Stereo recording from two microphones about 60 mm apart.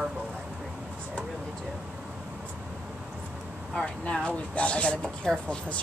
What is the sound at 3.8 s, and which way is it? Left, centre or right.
Speech, centre.